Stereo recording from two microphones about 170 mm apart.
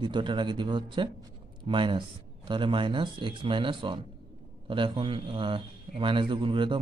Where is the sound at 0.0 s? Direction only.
30° right (ahead or behind).